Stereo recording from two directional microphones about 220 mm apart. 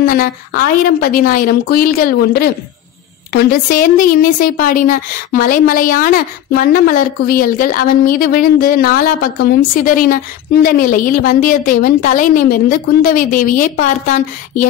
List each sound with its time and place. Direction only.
0.0 s speech: 40° left (ahead or behind)